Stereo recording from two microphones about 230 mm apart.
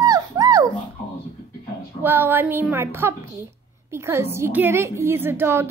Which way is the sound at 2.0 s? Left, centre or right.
Centre.